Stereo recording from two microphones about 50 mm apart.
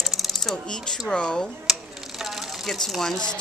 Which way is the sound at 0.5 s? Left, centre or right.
Centre.